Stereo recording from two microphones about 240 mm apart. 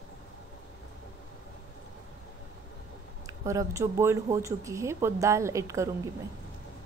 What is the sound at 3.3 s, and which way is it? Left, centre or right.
Speech, centre.